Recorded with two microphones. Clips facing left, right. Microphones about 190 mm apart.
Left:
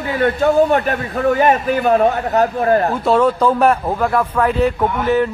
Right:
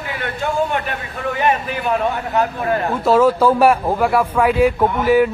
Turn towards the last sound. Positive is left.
turn(degrees=-10)  # may be behind; listen again after turning